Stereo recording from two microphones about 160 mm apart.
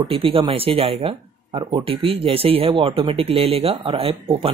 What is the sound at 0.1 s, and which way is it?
Speech, 35° right (ahead or behind).